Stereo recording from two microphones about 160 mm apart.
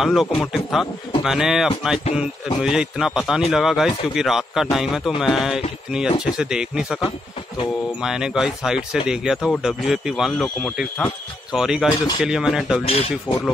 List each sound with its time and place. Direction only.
0.0 s speech: centre (ahead or behind)
8.0 s speech: 5° right (ahead or behind)
12.8 s speech: 40° left (ahead or behind)